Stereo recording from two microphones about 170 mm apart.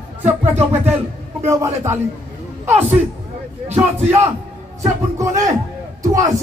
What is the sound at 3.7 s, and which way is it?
Speech, 40° right (ahead or behind).